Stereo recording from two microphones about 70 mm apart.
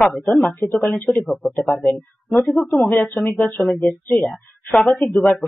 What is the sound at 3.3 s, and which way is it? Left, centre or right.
Speech, left.